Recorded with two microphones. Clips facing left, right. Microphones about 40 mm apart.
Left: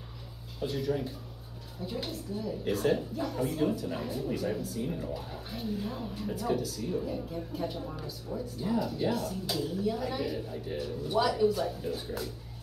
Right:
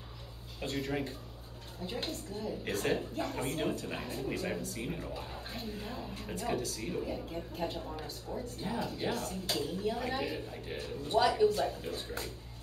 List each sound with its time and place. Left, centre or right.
0.6 s a woman's voice: right